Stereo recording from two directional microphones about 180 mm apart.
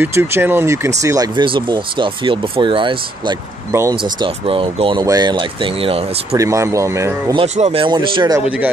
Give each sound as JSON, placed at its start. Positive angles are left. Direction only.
{"t": 0.0, "sound": "speech", "side_deg": -15}
{"t": 6.3, "sound": "speech", "side_deg": -15}
{"t": 7.3, "sound": "speech", "side_deg": -35}
{"t": 8.5, "sound": "speech", "side_deg": -10}